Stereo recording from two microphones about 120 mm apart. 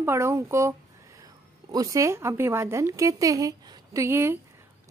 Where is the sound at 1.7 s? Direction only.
25° right (ahead or behind).